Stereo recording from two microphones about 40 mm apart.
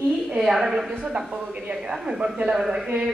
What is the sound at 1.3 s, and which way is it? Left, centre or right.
Speech, right.